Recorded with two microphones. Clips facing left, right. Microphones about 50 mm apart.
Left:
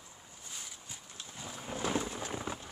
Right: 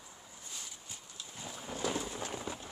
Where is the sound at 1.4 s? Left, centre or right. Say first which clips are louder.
Left 1 dB; centre.